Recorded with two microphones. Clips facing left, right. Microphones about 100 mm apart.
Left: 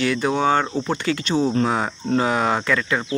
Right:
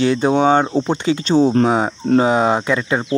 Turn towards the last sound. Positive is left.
turn(degrees=-25)  # may be behind; listen again after turning